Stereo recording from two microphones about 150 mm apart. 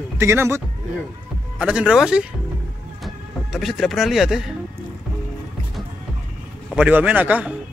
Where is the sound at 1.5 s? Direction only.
5° right (ahead or behind).